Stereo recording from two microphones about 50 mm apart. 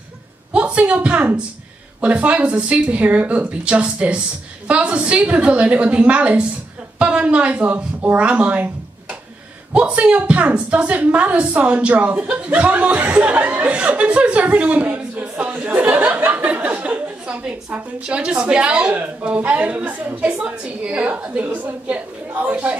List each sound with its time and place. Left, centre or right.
0.5 s a woman's voice: right
9.8 s a woman's voice: right
13.7 s a woman's voice: right
14.6 s a sound: right
18.0 s a woman's voice: centre; by 20.2 s right
20.2 s a woman's voice: right